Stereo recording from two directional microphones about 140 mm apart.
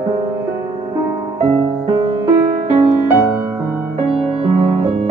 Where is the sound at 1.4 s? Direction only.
40° right (ahead or behind).